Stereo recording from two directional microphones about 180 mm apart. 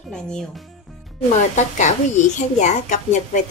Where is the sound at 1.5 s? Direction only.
40° left (ahead or behind).